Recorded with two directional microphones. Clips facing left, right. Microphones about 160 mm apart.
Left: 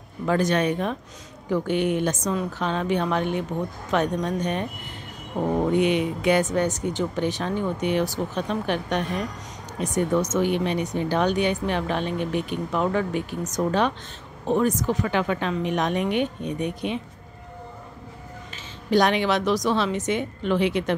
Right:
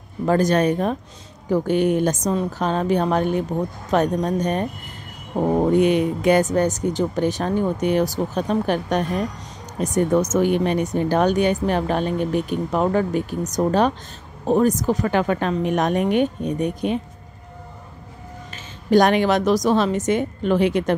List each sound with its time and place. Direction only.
0.2 s speech: 40° right (ahead or behind)
18.9 s speech: 45° right (ahead or behind)